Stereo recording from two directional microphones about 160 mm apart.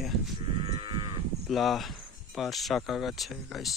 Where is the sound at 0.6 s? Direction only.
30° right (ahead or behind).